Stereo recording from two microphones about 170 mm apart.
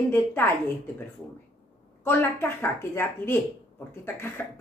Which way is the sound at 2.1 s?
15° left (ahead or behind).